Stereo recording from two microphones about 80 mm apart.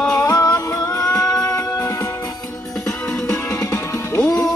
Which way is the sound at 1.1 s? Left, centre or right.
Centre.